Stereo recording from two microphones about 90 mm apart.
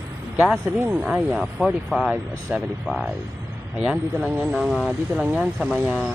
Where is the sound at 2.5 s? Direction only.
15° right (ahead or behind).